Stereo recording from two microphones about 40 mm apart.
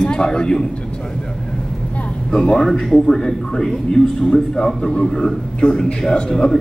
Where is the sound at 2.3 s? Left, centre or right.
Centre.